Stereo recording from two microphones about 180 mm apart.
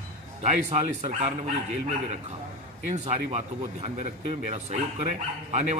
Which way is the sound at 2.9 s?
40° right (ahead or behind).